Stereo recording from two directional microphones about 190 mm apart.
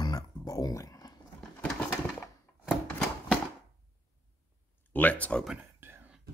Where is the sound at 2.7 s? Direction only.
5° left (ahead or behind).